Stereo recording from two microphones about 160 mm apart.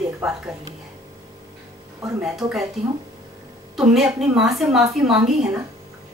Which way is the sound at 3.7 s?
5° right (ahead or behind).